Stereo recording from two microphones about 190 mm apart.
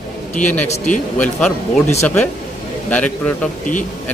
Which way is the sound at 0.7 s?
40° left (ahead or behind).